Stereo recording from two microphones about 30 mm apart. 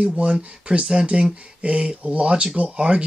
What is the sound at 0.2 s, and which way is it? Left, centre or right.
Speech, right.